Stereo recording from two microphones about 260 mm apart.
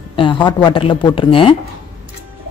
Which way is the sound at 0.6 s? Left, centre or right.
Centre.